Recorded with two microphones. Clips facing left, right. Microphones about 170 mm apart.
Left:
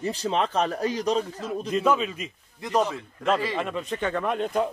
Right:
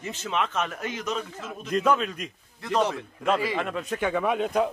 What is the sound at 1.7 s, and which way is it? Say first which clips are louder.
A man's voice: right 1 dB; centre (ahead or behind).